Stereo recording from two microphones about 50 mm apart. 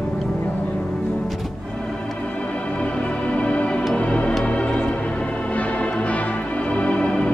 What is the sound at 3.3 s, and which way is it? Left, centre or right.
Music, left.